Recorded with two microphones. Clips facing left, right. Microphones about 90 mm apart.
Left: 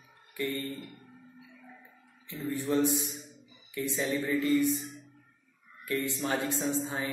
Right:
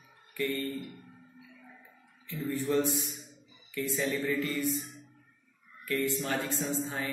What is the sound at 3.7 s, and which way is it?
Speech, 20° left (ahead or behind).